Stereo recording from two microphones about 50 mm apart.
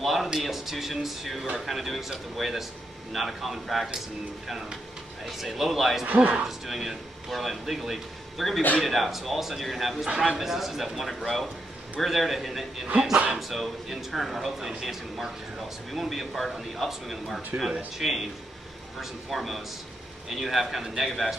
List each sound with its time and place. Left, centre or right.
0.0 s a sound: centre
0.4 s speech: centre
6.0 s speech: right
6.3 s speech: centre
13.1 s speech: right
13.4 s speech: centre